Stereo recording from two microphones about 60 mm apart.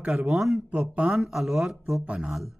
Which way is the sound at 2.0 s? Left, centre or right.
Centre.